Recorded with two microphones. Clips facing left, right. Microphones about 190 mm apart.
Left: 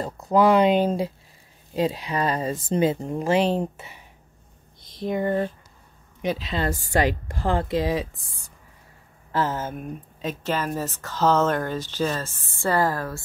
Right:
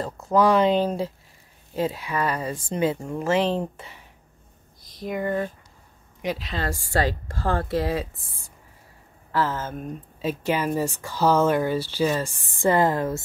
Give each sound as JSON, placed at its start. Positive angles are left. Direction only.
{"t": 0.0, "sound": "speech", "side_deg": 15}
{"t": 4.8, "sound": "a sound", "side_deg": 25}
{"t": 6.2, "sound": "speech", "side_deg": 25}
{"t": 9.3, "sound": "speech", "side_deg": 20}
{"t": 10.2, "sound": "speech", "side_deg": -10}